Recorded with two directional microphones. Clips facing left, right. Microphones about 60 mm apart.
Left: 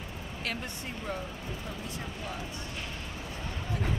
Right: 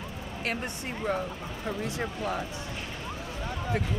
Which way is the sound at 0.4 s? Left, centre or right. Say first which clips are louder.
Right 4 dB; right.